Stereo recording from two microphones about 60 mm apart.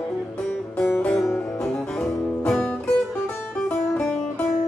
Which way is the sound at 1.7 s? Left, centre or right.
Centre.